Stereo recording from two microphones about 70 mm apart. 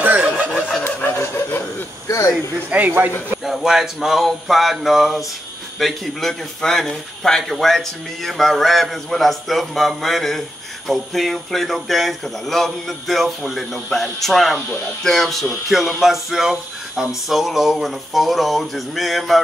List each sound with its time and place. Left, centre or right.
0.0 s chicken: right
0.8 s fowl: left
2.7 s speech: centre
3.4 s a man's voice: centre